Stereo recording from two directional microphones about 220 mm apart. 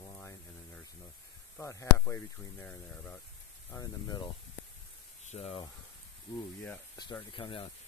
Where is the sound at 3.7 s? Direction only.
20° left (ahead or behind).